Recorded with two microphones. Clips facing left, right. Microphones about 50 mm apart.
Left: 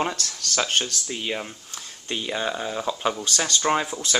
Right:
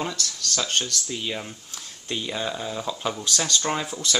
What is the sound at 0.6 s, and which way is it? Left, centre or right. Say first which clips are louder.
Speech: left 3 dB; left.